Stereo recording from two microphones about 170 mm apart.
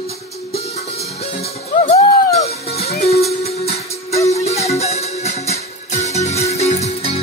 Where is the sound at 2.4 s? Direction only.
40° left (ahead or behind).